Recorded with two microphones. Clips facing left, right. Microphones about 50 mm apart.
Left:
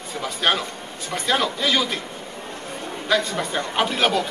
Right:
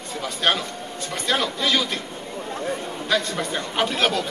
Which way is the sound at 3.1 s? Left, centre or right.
Centre.